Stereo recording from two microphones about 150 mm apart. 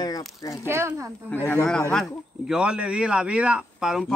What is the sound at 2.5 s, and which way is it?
Speech, 5° right (ahead or behind).